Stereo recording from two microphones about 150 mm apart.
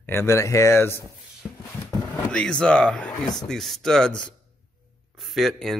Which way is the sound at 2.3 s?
5° left (ahead or behind).